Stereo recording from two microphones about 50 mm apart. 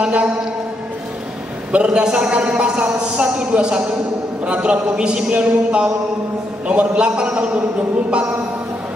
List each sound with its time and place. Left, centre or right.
0.0 s a man's voice: right
1.7 s a man's voice: right